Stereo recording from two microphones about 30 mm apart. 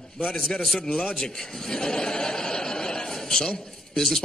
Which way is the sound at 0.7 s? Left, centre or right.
Centre.